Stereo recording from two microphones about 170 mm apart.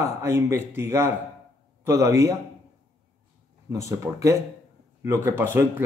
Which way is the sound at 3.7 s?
20° right (ahead or behind).